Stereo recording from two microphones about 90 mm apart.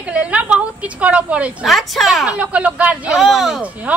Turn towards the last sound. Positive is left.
turn(degrees=0)  # may be behind; listen again after turning